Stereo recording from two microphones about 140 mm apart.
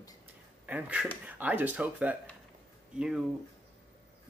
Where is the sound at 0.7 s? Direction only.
10° right (ahead or behind).